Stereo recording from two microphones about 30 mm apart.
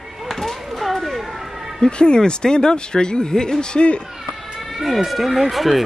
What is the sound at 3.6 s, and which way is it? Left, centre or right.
Speech, left.